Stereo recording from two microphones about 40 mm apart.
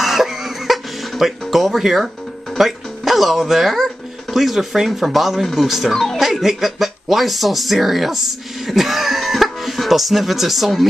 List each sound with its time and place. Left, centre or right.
0.0 s cough: centre
1.5 s speech: centre